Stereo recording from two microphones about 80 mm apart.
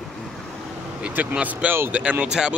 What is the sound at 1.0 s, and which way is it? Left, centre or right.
Speech, right.